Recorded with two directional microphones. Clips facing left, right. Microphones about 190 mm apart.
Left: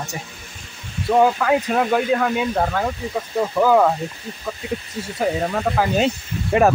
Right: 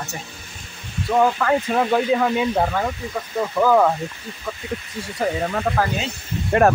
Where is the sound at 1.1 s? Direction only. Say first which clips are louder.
Left 2 dB; 10° left (ahead or behind).